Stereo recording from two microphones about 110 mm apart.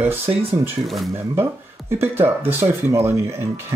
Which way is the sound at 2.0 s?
20° right (ahead or behind).